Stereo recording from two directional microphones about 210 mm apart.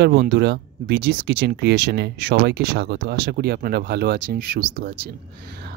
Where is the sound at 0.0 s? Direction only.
50° right (ahead or behind).